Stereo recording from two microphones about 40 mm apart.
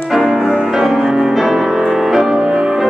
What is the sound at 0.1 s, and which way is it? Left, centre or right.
Music, centre.